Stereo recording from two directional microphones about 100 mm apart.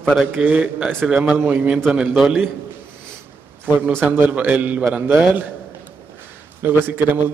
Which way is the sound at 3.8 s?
20° right (ahead or behind).